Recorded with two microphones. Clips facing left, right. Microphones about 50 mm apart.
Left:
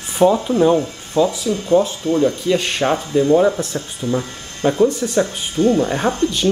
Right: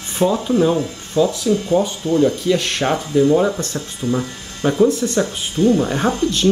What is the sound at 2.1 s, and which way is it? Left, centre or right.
Speech, left.